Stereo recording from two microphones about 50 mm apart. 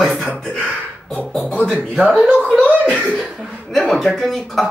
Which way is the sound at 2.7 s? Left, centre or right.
Right.